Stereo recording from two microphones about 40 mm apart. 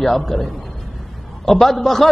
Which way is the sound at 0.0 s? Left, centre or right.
Centre.